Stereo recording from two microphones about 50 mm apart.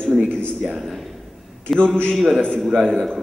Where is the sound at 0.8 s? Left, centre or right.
Centre.